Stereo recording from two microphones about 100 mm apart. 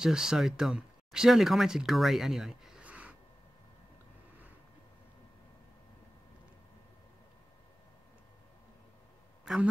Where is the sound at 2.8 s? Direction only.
10° right (ahead or behind).